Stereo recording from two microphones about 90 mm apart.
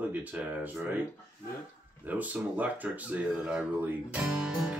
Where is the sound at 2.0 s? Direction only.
15° right (ahead or behind).